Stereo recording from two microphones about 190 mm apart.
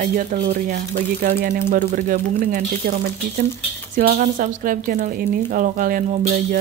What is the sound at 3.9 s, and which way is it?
Music, 50° right (ahead or behind).